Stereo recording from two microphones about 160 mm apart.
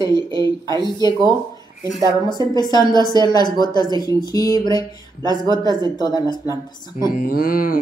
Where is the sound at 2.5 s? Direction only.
25° left (ahead or behind).